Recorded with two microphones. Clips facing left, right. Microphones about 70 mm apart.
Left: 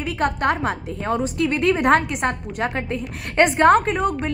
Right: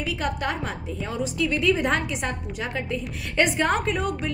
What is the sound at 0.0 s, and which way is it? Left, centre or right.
A woman's voice, left.